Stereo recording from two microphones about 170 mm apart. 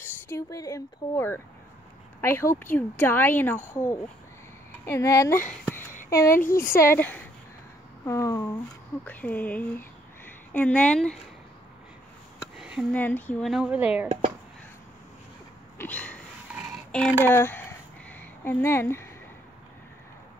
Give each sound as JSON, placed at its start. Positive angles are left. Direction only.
{"t": 0.0, "sound": "speech", "side_deg": 15}
{"t": 5.7, "sound": "a sound", "side_deg": 15}
{"t": 6.3, "sound": "speech", "side_deg": 55}
{"t": 6.8, "sound": "speech", "side_deg": 10}
{"t": 12.5, "sound": "a sound", "side_deg": -5}
{"t": 12.9, "sound": "speech", "side_deg": 10}
{"t": 13.5, "sound": "speech", "side_deg": -5}
{"t": 15.8, "sound": "a sound", "side_deg": 10}
{"t": 16.9, "sound": "speech", "side_deg": 10}